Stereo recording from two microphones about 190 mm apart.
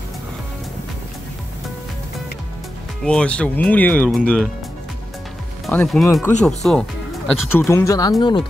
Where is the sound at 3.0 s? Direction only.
5° left (ahead or behind).